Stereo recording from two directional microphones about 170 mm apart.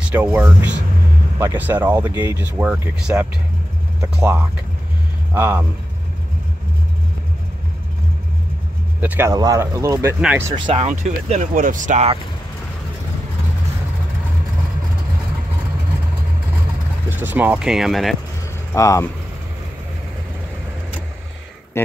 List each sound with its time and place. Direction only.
0.0 s speech: 10° right (ahead or behind)
9.0 s speech: 10° right (ahead or behind)
9.3 s speech: 20° right (ahead or behind)
10.7 s speech: 45° right (ahead or behind)
17.1 s speech: 10° right (ahead or behind)
18.7 s speech: 20° left (ahead or behind)
21.8 s speech: 15° left (ahead or behind)